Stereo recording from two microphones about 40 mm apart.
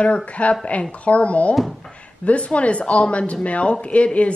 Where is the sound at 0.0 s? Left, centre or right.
Left.